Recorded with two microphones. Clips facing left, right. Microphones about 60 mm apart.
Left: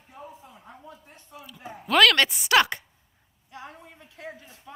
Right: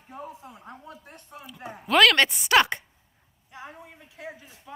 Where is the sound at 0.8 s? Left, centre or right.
Right.